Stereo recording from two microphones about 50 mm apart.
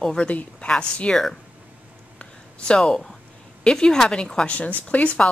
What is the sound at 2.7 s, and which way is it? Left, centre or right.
Speech, centre.